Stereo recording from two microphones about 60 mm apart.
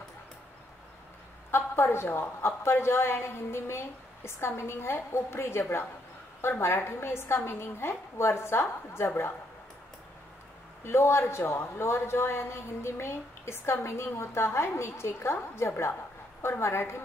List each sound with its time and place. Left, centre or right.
1.5 s a woman's voice: left
10.8 s a woman's voice: left